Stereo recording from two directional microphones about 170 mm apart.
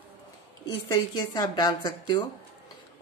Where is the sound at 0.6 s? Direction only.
25° left (ahead or behind).